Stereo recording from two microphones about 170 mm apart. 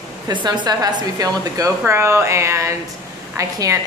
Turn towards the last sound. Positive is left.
turn(degrees=-20)  # may be behind; listen again after turning